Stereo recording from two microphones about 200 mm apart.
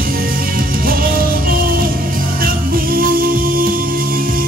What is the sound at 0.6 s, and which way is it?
Music, 45° right (ahead or behind).